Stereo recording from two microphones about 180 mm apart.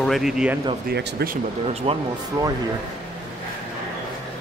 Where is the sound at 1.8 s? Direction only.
30° right (ahead or behind).